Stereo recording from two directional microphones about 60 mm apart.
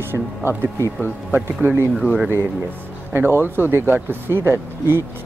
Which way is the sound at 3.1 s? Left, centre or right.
Right.